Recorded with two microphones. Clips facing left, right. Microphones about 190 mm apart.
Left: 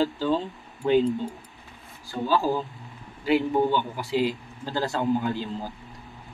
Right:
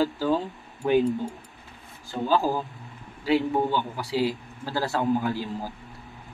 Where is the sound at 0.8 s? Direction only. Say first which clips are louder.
Left 1 dB; 15° right (ahead or behind).